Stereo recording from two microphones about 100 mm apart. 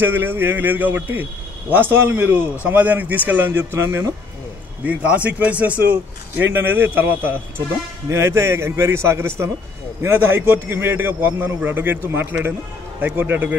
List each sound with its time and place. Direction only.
0.0 s a man's voice: 20° right (ahead or behind)
4.8 s a man's voice: 15° right (ahead or behind)